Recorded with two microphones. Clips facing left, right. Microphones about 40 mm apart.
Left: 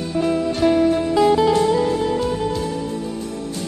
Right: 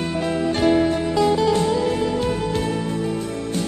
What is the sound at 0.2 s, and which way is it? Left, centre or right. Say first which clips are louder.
Music: left 3 dB; right.